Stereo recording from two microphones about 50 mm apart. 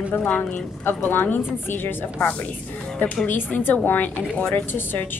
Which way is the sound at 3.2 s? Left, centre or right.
Left.